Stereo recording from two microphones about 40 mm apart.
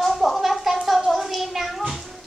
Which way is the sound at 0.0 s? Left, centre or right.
Centre.